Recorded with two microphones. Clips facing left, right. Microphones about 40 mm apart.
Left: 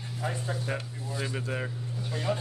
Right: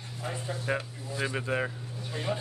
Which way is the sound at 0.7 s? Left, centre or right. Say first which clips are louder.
Right 2 dB; centre.